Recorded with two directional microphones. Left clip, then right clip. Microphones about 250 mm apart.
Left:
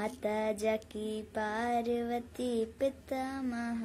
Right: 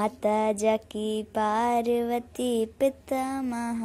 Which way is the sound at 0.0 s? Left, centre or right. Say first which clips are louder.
Right 9 dB; right.